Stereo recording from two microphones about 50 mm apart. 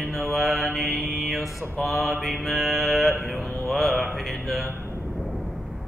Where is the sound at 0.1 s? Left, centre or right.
Centre.